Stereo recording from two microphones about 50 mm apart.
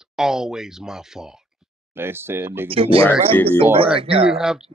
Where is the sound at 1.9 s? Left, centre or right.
Right.